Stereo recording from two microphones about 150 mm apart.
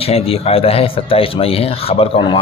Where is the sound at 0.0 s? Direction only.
40° left (ahead or behind).